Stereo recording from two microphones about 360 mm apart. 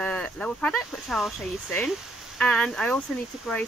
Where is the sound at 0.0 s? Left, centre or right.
Centre.